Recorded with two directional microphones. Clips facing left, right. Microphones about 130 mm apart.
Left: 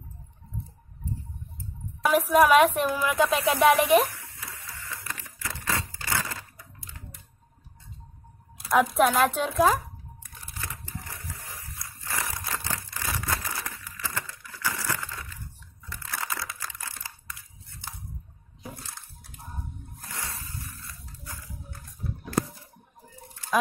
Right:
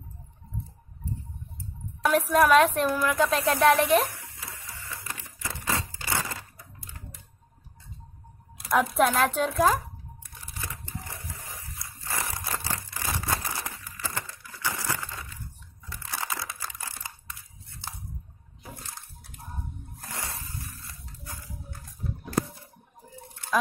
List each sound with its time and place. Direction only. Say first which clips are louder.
2.0 s a woman's voice: left 1 dB; 5° left (ahead or behind)
4.6 s crushing: left 2 dB; 25° right (ahead or behind)
8.6 s a woman's voice: left 1 dB; centre (ahead or behind)
11.8 s a sound: even; 25° right (ahead or behind)
16.1 s crumpling: even; 30° right (ahead or behind)
20.1 s dog: right 1 dB; 20° right (ahead or behind)